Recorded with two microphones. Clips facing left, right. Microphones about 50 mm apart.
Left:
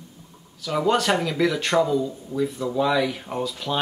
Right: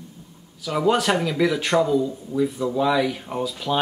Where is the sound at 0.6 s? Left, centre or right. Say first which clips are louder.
Right 1 dB; centre.